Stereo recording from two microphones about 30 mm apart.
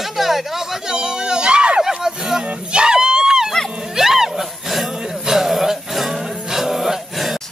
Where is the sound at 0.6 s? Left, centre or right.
Centre.